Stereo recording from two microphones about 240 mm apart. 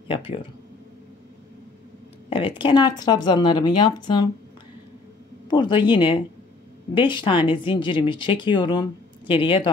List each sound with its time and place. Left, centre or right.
0.1 s speech: left
2.2 s speech: left
5.5 s speech: centre